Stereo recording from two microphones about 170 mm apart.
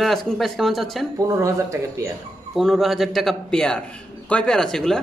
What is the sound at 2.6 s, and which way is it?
Speech, centre (ahead or behind).